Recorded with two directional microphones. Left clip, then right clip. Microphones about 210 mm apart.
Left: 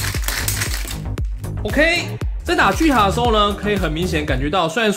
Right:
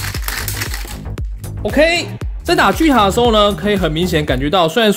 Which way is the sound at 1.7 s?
40° right (ahead or behind).